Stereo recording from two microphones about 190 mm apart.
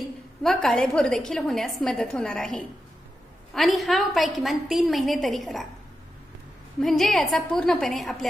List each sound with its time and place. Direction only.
0.4 s a woman's voice: centre (ahead or behind)
6.8 s a woman's voice: centre (ahead or behind)